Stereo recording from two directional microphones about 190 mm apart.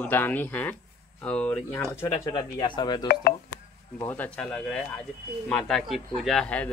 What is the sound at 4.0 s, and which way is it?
Speech, 10° left (ahead or behind).